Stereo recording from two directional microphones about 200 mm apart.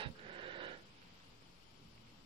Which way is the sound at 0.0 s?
25° right (ahead or behind).